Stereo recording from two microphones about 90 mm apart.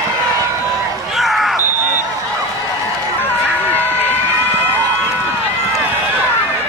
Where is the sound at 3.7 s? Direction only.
20° left (ahead or behind).